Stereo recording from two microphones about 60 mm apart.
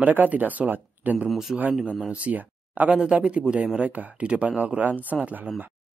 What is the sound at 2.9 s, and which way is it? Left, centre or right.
Speech, centre.